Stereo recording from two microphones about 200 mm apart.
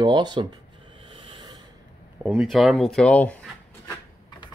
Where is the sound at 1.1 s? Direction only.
25° right (ahead or behind).